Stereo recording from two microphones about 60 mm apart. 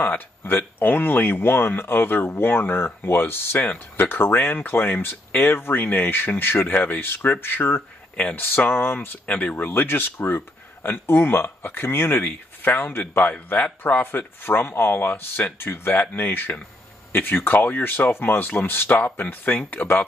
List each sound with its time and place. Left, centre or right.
0.0 s speech: left
6.7 s speech: left
9.2 s speech: left